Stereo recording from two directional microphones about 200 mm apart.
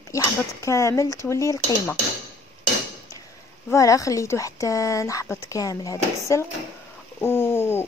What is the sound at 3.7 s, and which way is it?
Speech, 15° left (ahead or behind).